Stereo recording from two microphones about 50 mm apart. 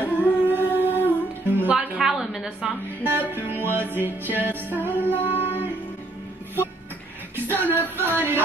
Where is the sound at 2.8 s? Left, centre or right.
Right.